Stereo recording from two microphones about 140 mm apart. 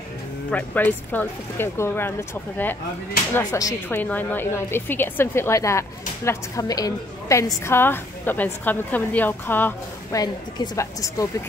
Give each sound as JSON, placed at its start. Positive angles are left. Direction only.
{"t": 0.5, "sound": "a woman's voice", "side_deg": 10}
{"t": 3.3, "sound": "a woman's voice", "side_deg": 25}
{"t": 3.9, "sound": "a woman's voice", "side_deg": 10}
{"t": 10.1, "sound": "a woman's voice", "side_deg": 25}